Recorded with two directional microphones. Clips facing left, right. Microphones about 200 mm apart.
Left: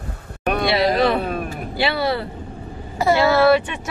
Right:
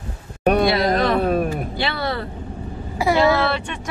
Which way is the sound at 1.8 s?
10° left (ahead or behind).